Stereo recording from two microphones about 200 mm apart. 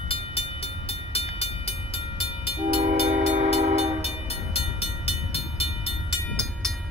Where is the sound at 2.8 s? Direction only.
45° right (ahead or behind).